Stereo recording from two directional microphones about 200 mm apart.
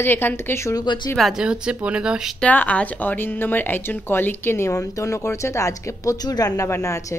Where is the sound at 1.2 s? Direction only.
Centre (ahead or behind).